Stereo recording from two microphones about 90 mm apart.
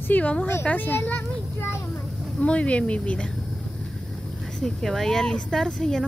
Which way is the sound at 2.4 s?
15° left (ahead or behind).